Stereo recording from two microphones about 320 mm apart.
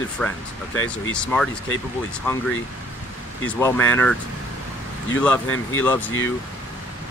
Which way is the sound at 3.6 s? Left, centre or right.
Centre.